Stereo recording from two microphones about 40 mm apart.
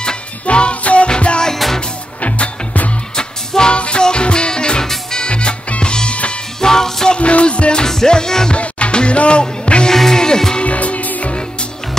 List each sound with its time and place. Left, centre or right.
0.5 s music: left
3.2 s music: left
6.6 s music: centre
7.2 s music: left
7.8 s music: centre
8.5 s music: left
10.6 s music: left